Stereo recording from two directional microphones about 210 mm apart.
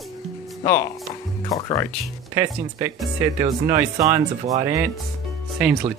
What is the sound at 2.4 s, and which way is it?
Speech, 10° right (ahead or behind).